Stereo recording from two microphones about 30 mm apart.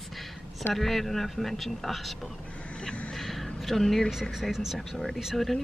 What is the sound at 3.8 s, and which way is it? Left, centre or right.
Speech, centre.